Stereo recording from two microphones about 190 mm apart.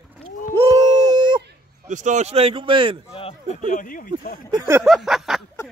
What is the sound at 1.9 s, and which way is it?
Speech, 40° right (ahead or behind).